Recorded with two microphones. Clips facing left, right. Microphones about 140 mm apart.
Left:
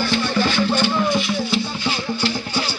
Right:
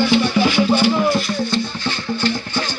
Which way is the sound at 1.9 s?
10° left (ahead or behind).